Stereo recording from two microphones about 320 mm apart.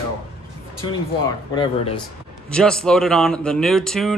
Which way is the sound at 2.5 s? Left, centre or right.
Centre.